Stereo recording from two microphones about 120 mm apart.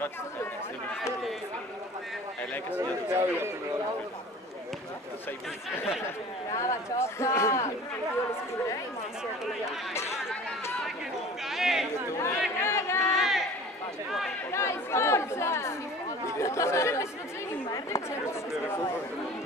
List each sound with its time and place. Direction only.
2.8 s speech: 25° right (ahead or behind)
6.5 s speech: 25° left (ahead or behind)
11.4 s chatter: centre (ahead or behind)
12.1 s speech: 25° left (ahead or behind)
12.6 s chatter: 20° left (ahead or behind)
13.1 s chatter: centre (ahead or behind)
14.5 s speech: 20° left (ahead or behind)